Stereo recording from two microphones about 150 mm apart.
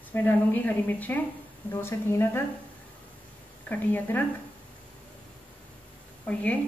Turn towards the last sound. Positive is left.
turn(degrees=10)  # may be behind; listen again after turning